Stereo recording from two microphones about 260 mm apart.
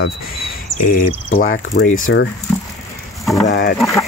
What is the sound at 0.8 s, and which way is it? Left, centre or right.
Speech, left.